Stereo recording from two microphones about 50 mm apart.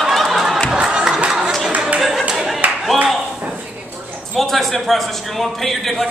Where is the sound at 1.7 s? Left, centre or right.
Right.